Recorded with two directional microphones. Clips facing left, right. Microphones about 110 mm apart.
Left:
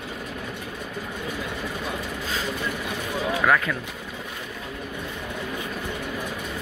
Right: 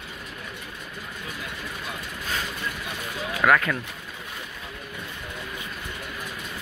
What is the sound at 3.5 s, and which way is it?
Speech, 15° left (ahead or behind).